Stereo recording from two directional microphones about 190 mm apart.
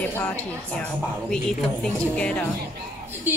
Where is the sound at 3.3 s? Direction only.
10° right (ahead or behind).